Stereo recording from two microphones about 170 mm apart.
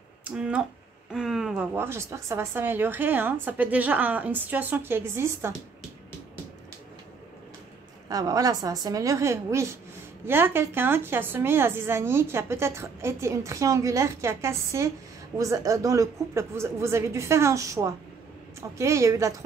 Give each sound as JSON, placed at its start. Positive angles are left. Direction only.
{"t": 0.2, "sound": "speech", "side_deg": -5}
{"t": 1.8, "sound": "a woman's voice", "side_deg": -15}
{"t": 8.1, "sound": "a woman's voice", "side_deg": -20}